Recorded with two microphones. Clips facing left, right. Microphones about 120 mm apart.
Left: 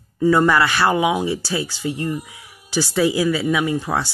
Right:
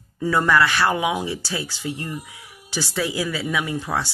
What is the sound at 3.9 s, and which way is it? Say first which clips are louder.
Speech: left 3 dB; 25° left (ahead or behind).